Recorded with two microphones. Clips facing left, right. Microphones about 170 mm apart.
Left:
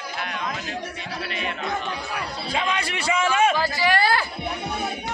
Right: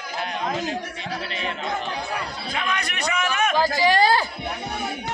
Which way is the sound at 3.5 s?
45° right (ahead or behind).